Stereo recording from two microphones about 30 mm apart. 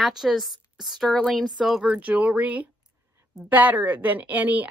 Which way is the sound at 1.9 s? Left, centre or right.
Right.